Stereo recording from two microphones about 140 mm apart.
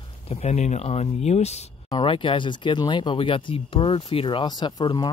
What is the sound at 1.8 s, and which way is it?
Speech, 35° left (ahead or behind).